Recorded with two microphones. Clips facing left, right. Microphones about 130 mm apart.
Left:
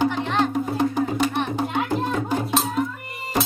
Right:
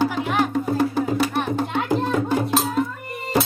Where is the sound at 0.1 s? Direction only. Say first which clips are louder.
Right 1 dB; 10° right (ahead or behind).